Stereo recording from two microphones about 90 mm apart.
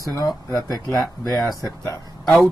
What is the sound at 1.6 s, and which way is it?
Speech, 40° left (ahead or behind).